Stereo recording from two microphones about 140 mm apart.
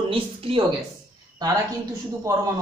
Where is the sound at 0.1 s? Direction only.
40° right (ahead or behind).